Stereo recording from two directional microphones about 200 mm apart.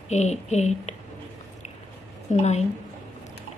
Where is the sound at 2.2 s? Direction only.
35° left (ahead or behind).